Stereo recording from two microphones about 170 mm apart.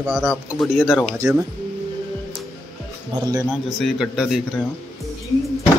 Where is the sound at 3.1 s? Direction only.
20° right (ahead or behind).